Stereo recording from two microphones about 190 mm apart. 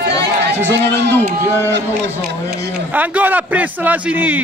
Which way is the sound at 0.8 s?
65° right (ahead or behind).